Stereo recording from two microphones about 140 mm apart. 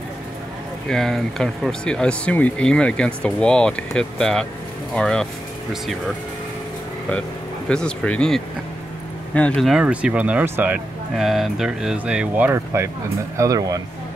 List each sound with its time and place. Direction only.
0.8 s speech: 5° left (ahead or behind)
7.7 s speech: 5° left (ahead or behind)
9.7 s speech: 5° right (ahead or behind)
11.1 s speech: centre (ahead or behind); by 13.8 s 25° right (ahead or behind)